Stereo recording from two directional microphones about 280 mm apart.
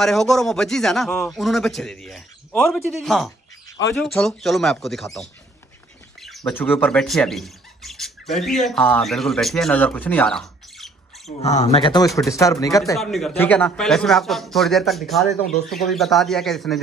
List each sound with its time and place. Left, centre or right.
0.0 s speech: centre
11.2 s speech: left
12.9 s speech: centre